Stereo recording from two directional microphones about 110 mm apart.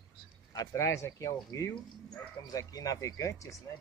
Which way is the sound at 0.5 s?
25° left (ahead or behind).